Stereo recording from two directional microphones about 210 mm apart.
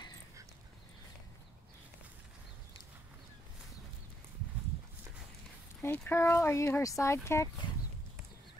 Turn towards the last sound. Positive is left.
turn(degrees=15)  # may be behind; listen again after turning